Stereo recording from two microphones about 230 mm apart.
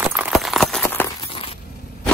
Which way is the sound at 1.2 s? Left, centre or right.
Left.